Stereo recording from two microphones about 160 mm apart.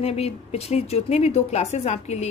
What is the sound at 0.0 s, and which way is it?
Speech, 40° left (ahead or behind).